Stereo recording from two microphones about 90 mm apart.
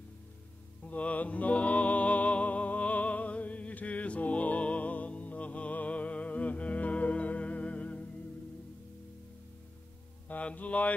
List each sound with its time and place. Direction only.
0.8 s music: 15° left (ahead or behind)
10.2 s mantra: 15° left (ahead or behind)